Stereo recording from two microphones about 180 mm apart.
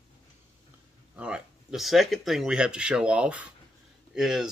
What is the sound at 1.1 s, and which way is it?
Speech, 5° right (ahead or behind).